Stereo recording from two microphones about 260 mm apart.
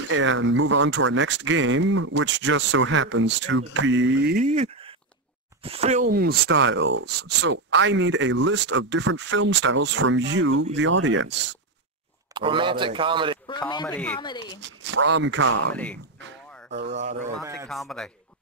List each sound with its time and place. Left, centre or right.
0.1 s speech: right
4.5 s speech: right
12.4 s speech: centre
13.5 s a man's voice: centre
13.8 s a man's voice: centre
14.2 s a man's voice: centre
14.6 s speech: right
15.7 s a man's voice: centre
16.7 s speech: right
17.4 s speech: centre
17.6 s a man's voice: centre